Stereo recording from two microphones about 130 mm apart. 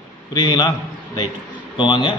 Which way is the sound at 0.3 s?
35° left (ahead or behind).